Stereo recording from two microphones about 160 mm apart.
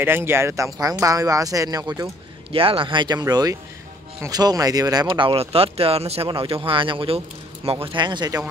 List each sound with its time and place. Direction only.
0.0 s speech: 15° right (ahead or behind)
2.5 s speech: 35° right (ahead or behind)